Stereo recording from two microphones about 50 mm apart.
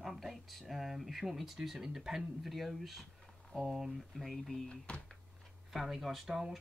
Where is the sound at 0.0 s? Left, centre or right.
Centre.